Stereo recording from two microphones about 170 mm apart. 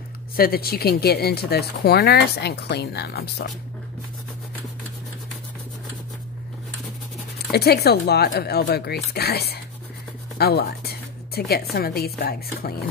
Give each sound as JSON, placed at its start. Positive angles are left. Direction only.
{"t": 0.4, "sound": "speech", "side_deg": 65}
{"t": 7.5, "sound": "speech", "side_deg": 70}
{"t": 10.3, "sound": "music", "side_deg": 70}
{"t": 11.7, "sound": "speech", "side_deg": 65}